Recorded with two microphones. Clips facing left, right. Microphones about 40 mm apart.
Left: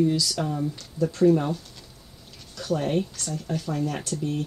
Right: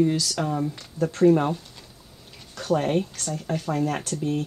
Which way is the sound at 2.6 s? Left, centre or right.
Right.